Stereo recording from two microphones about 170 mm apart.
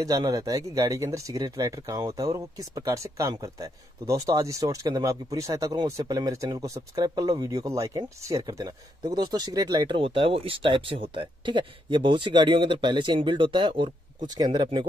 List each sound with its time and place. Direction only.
0.0 s speech: 20° right (ahead or behind)